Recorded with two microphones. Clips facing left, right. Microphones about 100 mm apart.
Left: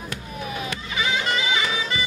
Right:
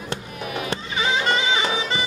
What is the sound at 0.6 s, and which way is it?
Music, 30° right (ahead or behind).